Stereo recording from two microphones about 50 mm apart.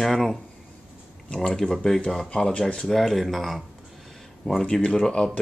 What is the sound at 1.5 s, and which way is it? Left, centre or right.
Speech, centre.